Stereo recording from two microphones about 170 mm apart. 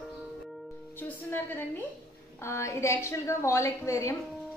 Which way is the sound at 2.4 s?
15° left (ahead or behind).